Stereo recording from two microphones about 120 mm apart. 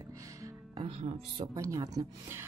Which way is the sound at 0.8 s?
55° right (ahead or behind).